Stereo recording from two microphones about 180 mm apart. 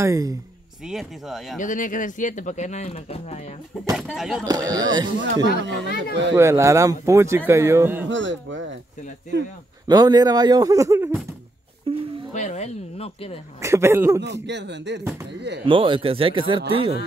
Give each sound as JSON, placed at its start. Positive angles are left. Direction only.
{"t": 0.0, "sound": "speech", "side_deg": -20}
{"t": 0.8, "sound": "speech", "side_deg": 0}
{"t": 1.6, "sound": "speech", "side_deg": 45}
{"t": 3.9, "sound": "speech", "side_deg": 0}
{"t": 4.6, "sound": "speech", "side_deg": -20}
{"t": 5.5, "sound": "speech", "side_deg": 60}
{"t": 6.3, "sound": "a man's voice", "side_deg": -15}
{"t": 8.1, "sound": "speech", "side_deg": -90}
{"t": 9.8, "sound": "speech", "side_deg": -20}
{"t": 11.9, "sound": "speech", "side_deg": -30}
{"t": 12.3, "sound": "speech", "side_deg": 40}
{"t": 13.6, "sound": "a man's voice", "side_deg": -15}
{"t": 14.2, "sound": "speech", "side_deg": -80}
{"t": 15.6, "sound": "speech", "side_deg": -30}